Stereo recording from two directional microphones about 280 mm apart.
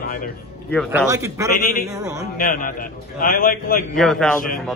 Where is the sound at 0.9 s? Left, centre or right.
Centre.